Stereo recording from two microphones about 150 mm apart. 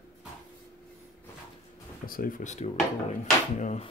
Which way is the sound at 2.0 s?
70° left (ahead or behind).